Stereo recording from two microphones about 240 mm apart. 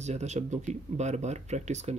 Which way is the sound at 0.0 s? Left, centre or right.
Right.